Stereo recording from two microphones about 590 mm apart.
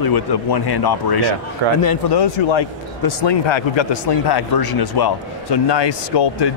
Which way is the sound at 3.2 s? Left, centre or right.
Left.